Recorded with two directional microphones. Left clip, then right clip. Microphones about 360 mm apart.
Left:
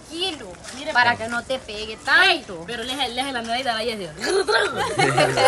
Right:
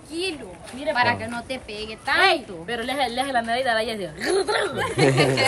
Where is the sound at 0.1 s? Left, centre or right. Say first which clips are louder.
Left 2 dB; centre.